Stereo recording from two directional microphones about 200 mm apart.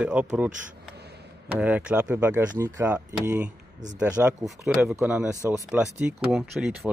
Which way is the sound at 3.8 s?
20° right (ahead or behind).